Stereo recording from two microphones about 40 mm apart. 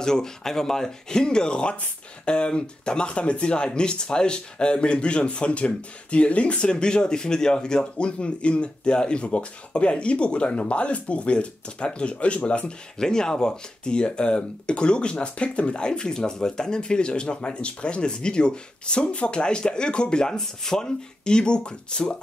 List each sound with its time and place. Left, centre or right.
0.0 s speech: centre
13.0 s speech: centre